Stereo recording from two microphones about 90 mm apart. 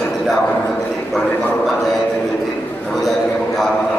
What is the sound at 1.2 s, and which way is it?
Speech, 20° left (ahead or behind).